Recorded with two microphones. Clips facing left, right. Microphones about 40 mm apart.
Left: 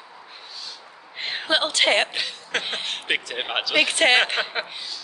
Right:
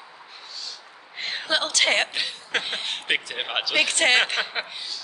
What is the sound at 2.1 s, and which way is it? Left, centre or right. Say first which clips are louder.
A woman's voice: even; centre.